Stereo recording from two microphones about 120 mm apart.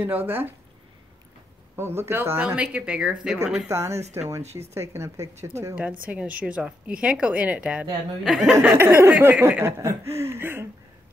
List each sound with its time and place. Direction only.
0.0 s a woman's voice: 15° right (ahead or behind)
1.8 s a woman's voice: 20° right (ahead or behind)
3.6 s chuckle: 20° right (ahead or behind)
5.8 s a woman's voice: 10° right (ahead or behind)
8.6 s chuckle: 20° right (ahead or behind)